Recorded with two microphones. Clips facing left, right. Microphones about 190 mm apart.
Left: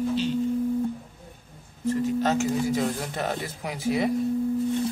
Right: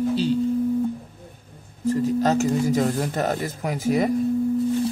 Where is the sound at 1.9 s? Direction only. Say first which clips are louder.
Right 3 dB; 40° right (ahead or behind).